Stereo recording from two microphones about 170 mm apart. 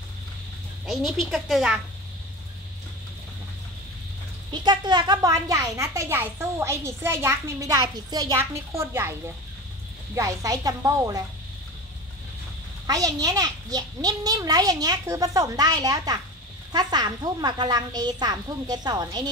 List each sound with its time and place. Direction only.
0.8 s a woman's voice: centre (ahead or behind)
4.5 s a woman's voice: 25° right (ahead or behind)
10.1 s a child's voice: 20° right (ahead or behind)
12.8 s a child's voice: 20° right (ahead or behind)